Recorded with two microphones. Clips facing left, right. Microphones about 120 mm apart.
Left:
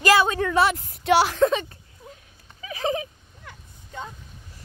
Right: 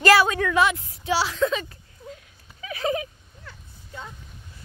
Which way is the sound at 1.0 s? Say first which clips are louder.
Left 5 dB; 55° left (ahead or behind).